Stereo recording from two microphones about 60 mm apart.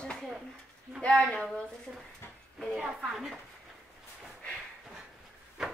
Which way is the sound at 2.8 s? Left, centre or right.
Centre.